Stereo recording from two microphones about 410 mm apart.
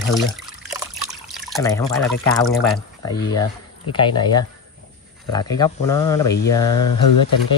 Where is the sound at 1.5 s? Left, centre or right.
Centre.